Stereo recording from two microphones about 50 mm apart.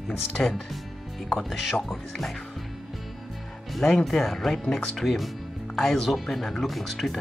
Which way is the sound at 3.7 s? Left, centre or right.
Centre.